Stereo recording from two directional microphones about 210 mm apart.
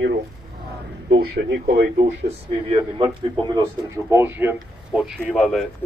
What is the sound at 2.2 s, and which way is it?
A man's voice, 25° right (ahead or behind).